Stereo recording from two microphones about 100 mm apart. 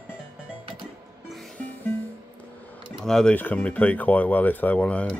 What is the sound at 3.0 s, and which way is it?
Speech, 5° left (ahead or behind).